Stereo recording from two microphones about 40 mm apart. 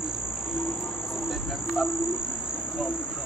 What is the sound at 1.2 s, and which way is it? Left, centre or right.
Cricket, centre.